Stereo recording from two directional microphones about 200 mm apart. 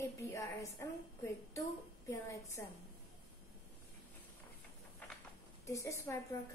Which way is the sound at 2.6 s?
10° left (ahead or behind).